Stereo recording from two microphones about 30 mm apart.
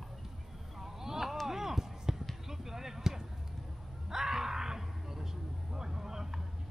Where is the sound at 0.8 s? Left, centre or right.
Centre.